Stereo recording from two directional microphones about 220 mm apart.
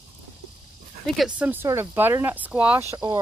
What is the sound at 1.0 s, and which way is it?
Speech, 5° right (ahead or behind).